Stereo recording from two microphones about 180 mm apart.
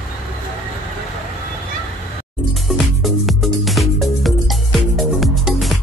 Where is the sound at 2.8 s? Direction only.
Centre (ahead or behind).